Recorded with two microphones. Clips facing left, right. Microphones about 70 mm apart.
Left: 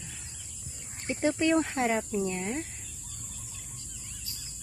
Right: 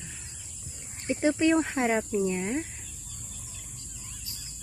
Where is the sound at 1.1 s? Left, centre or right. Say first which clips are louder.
Right 2 dB; centre.